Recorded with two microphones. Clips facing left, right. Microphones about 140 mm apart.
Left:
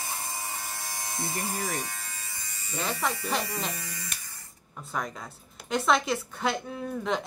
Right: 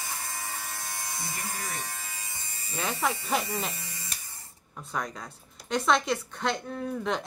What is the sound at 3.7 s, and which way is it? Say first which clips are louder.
Hum: left 3 dB; 25° right (ahead or behind).